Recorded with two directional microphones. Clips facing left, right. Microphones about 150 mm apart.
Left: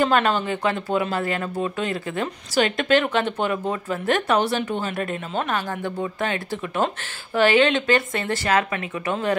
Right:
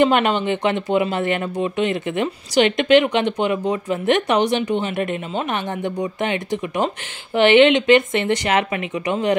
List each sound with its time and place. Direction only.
0.0 s speech: 20° right (ahead or behind)